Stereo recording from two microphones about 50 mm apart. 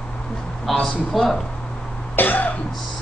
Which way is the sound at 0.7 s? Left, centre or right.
Centre.